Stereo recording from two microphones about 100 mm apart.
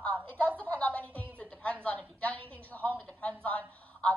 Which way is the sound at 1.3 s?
15° left (ahead or behind).